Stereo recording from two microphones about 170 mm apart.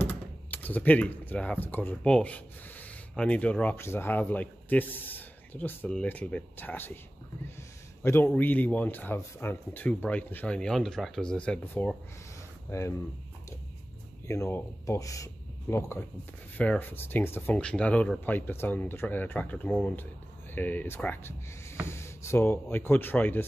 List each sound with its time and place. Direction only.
0.0 s speech: 10° left (ahead or behind)
8.0 s a man's voice: 15° left (ahead or behind)
14.2 s speech: 15° left (ahead or behind)